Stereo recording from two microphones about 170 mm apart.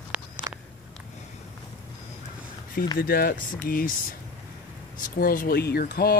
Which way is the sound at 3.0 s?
60° left (ahead or behind).